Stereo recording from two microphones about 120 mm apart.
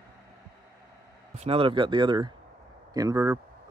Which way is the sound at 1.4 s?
55° right (ahead or behind).